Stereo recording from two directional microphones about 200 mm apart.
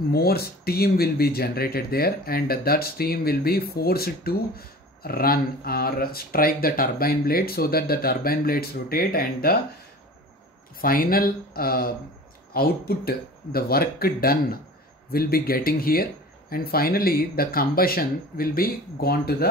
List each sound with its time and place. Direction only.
0.1 s speech: 50° left (ahead or behind)
10.8 s speech: 45° left (ahead or behind)